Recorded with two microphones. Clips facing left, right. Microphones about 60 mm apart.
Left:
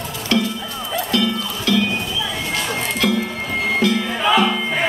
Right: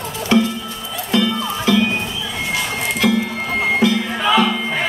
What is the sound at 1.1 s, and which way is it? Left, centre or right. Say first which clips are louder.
Music: right 4 dB; right.